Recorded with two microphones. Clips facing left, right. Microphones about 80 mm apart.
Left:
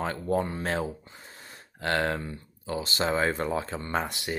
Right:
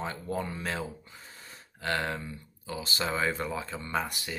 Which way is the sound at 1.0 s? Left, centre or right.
Left.